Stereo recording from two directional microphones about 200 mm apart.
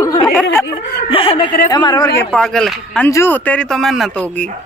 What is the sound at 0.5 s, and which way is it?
Speech, 10° left (ahead or behind).